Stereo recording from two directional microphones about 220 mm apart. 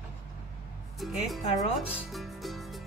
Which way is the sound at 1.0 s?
Centre (ahead or behind).